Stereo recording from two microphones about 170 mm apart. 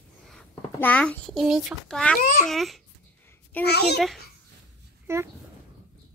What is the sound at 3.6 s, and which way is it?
Speech, 75° left (ahead or behind).